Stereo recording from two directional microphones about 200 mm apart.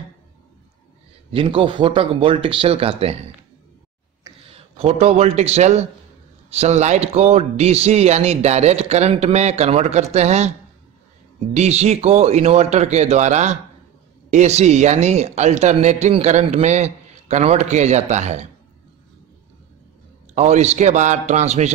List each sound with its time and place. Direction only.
1.3 s speech: 25° right (ahead or behind)
4.7 s a man's voice: 30° right (ahead or behind)
11.5 s a man's voice: 35° right (ahead or behind)
20.3 s a man's voice: 35° right (ahead or behind)